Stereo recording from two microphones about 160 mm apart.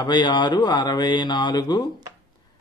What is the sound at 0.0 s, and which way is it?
A man's voice, 30° left (ahead or behind).